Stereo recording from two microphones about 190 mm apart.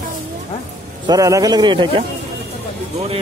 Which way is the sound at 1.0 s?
20° right (ahead or behind).